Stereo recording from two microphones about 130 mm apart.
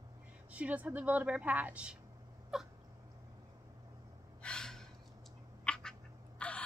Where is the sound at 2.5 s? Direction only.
5° right (ahead or behind).